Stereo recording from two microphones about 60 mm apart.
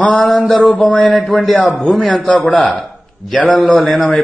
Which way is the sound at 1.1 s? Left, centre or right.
Centre.